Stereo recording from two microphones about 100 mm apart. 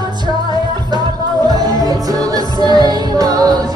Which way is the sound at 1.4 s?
40° right (ahead or behind).